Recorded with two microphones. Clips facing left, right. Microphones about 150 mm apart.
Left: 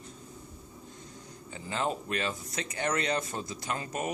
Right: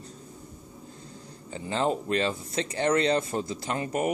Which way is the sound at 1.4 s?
30° right (ahead or behind).